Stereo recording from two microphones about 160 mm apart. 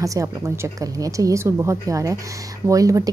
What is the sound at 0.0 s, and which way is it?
A woman's voice, 20° right (ahead or behind).